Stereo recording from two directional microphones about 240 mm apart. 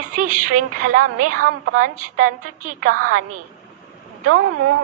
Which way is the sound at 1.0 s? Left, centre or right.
Right.